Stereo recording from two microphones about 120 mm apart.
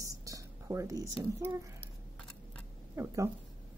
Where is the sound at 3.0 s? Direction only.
25° right (ahead or behind).